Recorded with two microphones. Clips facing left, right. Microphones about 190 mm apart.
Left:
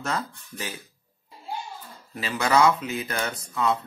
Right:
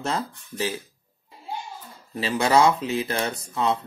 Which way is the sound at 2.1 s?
30° right (ahead or behind).